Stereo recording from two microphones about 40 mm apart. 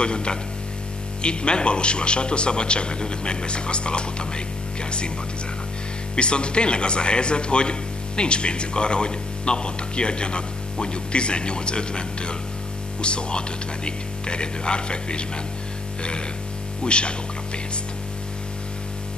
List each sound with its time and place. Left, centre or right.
0.0 s speech: left
6.1 s speech: left
16.8 s speech: left